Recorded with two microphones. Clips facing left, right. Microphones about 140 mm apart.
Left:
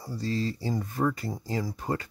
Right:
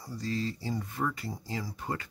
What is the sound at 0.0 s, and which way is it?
Speech, 30° left (ahead or behind).